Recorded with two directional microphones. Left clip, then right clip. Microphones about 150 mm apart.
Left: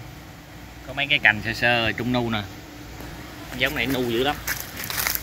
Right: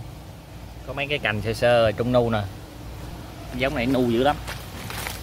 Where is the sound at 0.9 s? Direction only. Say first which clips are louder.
Left 6 dB; 35° right (ahead or behind).